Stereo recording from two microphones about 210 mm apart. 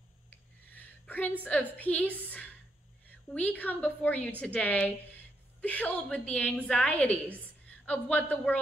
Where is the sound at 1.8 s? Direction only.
5° left (ahead or behind).